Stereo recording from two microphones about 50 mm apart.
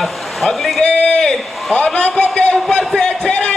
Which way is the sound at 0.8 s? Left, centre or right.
Centre.